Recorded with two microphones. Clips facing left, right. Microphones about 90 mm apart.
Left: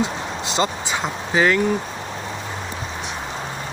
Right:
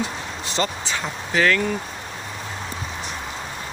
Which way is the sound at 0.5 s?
20° left (ahead or behind).